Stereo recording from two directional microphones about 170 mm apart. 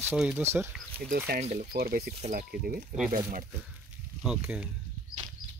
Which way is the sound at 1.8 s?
65° right (ahead or behind).